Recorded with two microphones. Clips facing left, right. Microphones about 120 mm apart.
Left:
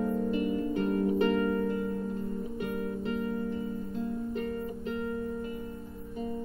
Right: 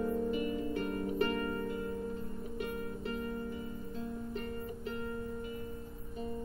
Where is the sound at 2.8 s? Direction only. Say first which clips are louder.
Left 6 dB; 30° left (ahead or behind).